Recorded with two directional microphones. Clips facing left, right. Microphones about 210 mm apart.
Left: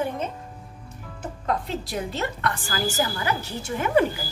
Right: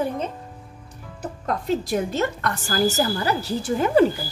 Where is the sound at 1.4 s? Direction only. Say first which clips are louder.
Right 4 dB; 45° right (ahead or behind).